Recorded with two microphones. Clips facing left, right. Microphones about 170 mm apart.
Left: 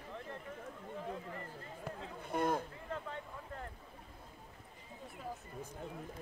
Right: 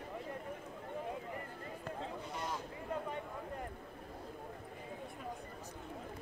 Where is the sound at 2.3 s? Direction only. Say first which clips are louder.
Left 11 dB; 55° left (ahead or behind).